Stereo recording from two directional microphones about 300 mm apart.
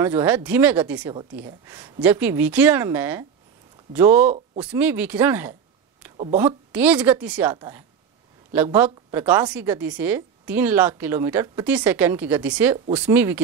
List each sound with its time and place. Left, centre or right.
0.0 s a woman's voice: centre